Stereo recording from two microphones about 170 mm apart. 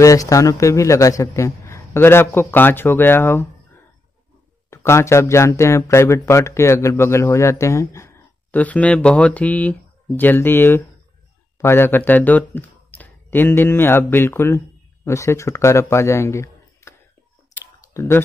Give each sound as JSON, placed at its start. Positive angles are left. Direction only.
{"t": 0.0, "sound": "speech", "side_deg": 20}
{"t": 4.6, "sound": "speech", "side_deg": 15}
{"t": 17.9, "sound": "speech", "side_deg": 15}